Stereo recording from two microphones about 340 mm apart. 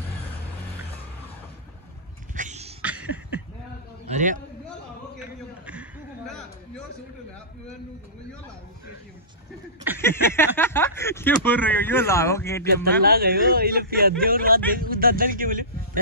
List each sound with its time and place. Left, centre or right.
2.3 s cat: right
2.8 s a sound: centre
4.1 s a man's voice: right
5.2 s a sound: centre
10.0 s speech: centre
13.0 s speech: right